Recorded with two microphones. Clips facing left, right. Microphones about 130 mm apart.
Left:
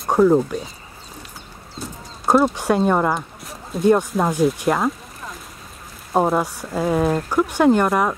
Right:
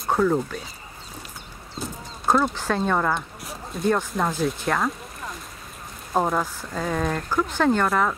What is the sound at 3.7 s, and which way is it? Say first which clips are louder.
Speech: left 7 dB; centre (ahead or behind).